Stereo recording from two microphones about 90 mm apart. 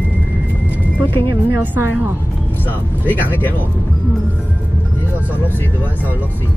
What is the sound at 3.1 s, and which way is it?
Speech, 20° left (ahead or behind).